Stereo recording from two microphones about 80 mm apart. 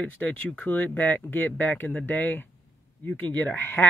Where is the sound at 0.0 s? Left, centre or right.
Centre.